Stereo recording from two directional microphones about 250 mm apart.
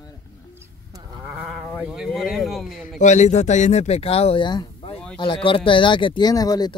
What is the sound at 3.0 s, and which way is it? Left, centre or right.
Speech, left.